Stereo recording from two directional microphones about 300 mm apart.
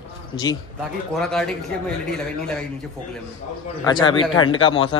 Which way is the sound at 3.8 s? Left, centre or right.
Centre.